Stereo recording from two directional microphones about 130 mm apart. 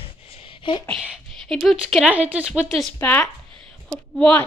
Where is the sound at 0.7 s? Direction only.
40° left (ahead or behind).